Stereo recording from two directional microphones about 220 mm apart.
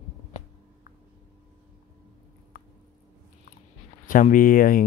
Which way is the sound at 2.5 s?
40° left (ahead or behind).